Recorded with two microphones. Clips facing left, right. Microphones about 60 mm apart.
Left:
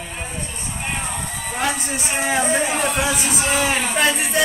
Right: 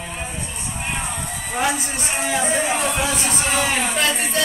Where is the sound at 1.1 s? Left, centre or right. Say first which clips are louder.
Right 1 dB; centre.